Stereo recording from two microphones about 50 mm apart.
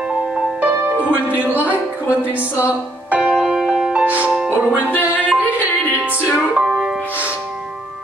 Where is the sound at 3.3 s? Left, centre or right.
Centre.